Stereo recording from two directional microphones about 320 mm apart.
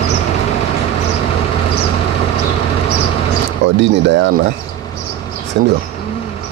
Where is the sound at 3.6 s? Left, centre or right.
Right.